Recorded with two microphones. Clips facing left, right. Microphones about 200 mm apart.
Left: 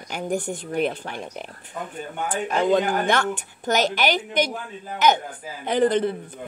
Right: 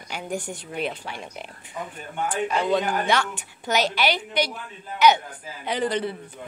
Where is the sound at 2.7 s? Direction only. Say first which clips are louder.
Left 2 dB; 50° left (ahead or behind).